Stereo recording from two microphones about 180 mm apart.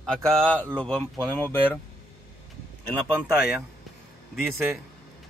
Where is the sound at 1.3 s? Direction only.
10° left (ahead or behind).